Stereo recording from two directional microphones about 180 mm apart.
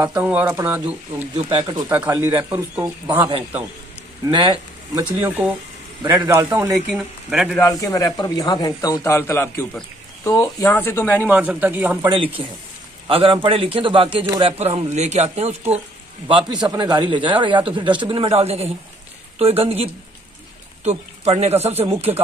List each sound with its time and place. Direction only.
0.0 s speech: 10° right (ahead or behind)
1.3 s speech: 25° right (ahead or behind)
4.9 s speech: 10° right (ahead or behind)
7.6 s speech: 20° left (ahead or behind)
11.2 s speech: 10° right (ahead or behind)
12.4 s speech: 30° right (ahead or behind)